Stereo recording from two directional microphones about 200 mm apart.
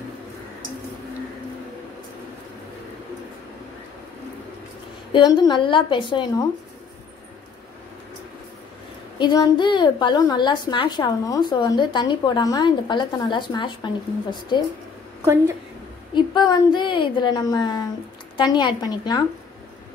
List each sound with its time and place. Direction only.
5.1 s a woman's voice: 20° left (ahead or behind)
9.2 s a woman's voice: 20° left (ahead or behind)
16.2 s a woman's voice: 20° left (ahead or behind)